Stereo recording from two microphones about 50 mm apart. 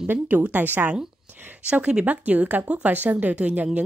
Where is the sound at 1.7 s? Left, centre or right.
Right.